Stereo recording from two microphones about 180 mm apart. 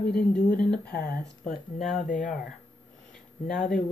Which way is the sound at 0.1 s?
5° left (ahead or behind).